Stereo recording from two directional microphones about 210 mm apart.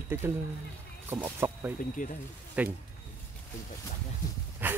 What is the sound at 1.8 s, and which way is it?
Speech, 40° left (ahead or behind).